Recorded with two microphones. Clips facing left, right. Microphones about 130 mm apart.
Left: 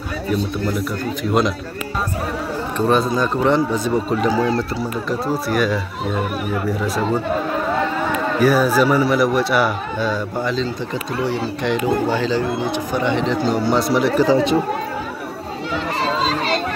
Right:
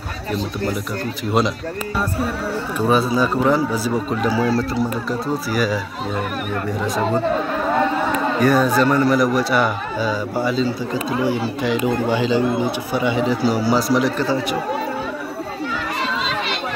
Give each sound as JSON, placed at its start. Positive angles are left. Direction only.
{"t": 0.3, "sound": "speech", "side_deg": 0}
{"t": 2.9, "sound": "speech", "side_deg": -5}
{"t": 8.4, "sound": "speech", "side_deg": 5}
{"t": 14.2, "sound": "speech", "side_deg": 20}
{"t": 16.0, "sound": "a sound", "side_deg": 35}